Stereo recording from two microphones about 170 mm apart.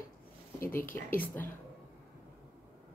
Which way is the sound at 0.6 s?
15° left (ahead or behind).